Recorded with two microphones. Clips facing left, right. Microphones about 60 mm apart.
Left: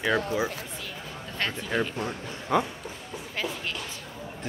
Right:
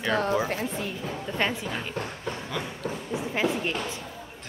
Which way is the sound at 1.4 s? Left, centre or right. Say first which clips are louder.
Right 4 dB; centre.